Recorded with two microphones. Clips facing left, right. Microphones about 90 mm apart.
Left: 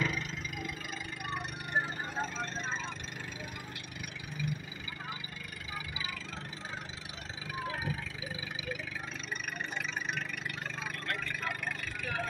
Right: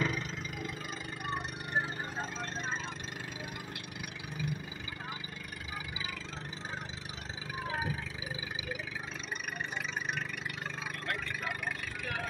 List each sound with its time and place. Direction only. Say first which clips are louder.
0.0 s vehicle: right 1 dB; 30° right (ahead or behind)
11.1 s vehicle: even; 10° right (ahead or behind)